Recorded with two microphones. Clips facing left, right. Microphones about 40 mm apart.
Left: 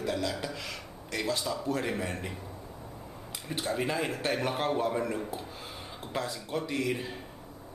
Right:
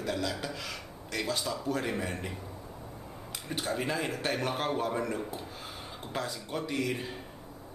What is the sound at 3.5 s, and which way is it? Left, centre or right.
Speech, centre.